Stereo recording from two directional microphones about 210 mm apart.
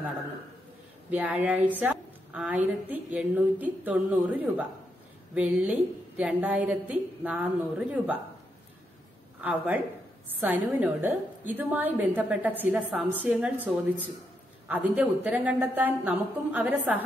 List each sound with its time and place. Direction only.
1.1 s a woman's voice: 5° right (ahead or behind)
9.4 s a woman's voice: 5° right (ahead or behind)